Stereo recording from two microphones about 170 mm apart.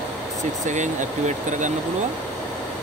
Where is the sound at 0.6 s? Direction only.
45° right (ahead or behind).